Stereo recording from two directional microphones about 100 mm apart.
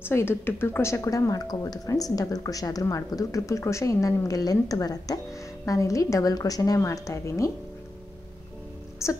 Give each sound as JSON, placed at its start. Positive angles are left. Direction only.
{"t": 0.0, "sound": "a woman's voice", "side_deg": 25}
{"t": 9.0, "sound": "speech", "side_deg": 30}